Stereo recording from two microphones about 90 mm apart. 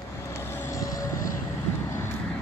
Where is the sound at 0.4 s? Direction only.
30° left (ahead or behind).